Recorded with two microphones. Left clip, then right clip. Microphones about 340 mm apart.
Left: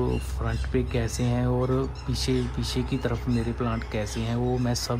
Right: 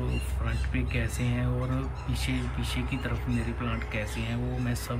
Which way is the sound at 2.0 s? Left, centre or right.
Centre.